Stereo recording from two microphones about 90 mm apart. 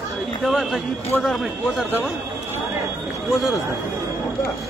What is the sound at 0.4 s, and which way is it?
Speech, centre (ahead or behind).